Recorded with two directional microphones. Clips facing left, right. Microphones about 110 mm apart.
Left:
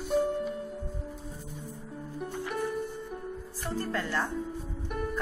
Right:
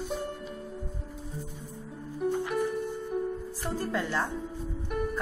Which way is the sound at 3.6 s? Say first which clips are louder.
Right 1 dB; 15° right (ahead or behind).